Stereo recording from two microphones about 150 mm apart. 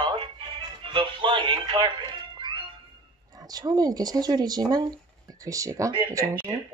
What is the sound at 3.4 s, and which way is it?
Speech, 25° right (ahead or behind).